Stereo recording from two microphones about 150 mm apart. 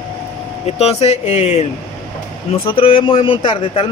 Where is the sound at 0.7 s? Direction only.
45° left (ahead or behind).